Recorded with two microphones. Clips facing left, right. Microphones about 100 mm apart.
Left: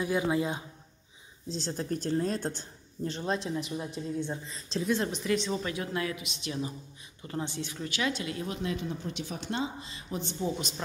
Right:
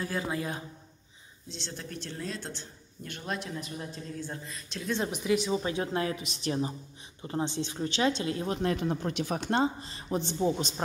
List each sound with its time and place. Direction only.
0.0 s a woman's voice: 15° left (ahead or behind)
1.5 s a woman's voice: 40° left (ahead or behind)
3.0 s a woman's voice: 30° left (ahead or behind)
5.0 s speech: 10° right (ahead or behind)
5.6 s speech: 30° right (ahead or behind)
7.2 s speech: 25° right (ahead or behind)
8.6 s speech: 55° right (ahead or behind); by 10.7 s 30° right (ahead or behind)